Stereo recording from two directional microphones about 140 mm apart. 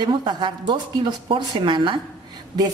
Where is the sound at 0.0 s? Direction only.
35° right (ahead or behind).